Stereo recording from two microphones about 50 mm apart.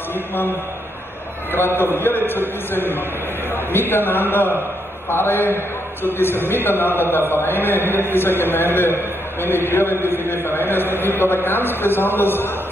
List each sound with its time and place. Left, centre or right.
1.8 s a man's voice: left